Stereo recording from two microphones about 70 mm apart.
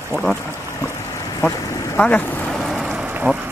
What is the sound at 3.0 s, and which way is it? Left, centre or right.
Vehicle, right.